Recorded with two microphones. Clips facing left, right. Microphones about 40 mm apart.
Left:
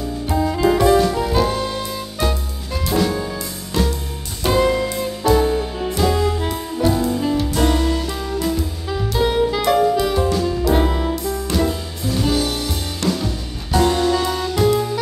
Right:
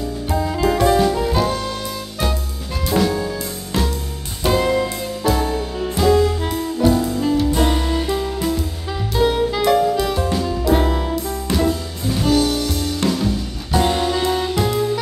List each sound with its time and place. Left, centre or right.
0.3 s saxophone: centre
4.5 s music: centre
7.5 s music: centre
13.2 s music: centre
13.8 s music: centre
14.5 s music: centre